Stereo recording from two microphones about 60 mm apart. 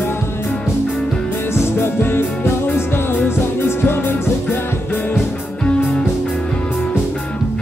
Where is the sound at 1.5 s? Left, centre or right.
Left.